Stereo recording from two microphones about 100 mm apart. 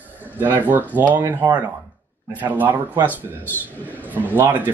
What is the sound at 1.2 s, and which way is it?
Speech, 35° right (ahead or behind).